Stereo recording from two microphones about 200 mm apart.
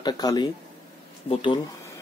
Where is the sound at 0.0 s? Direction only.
20° left (ahead or behind).